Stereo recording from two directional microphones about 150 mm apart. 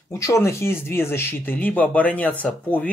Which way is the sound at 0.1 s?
20° left (ahead or behind).